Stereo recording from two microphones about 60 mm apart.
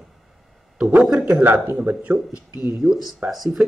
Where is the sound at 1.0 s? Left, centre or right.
Centre.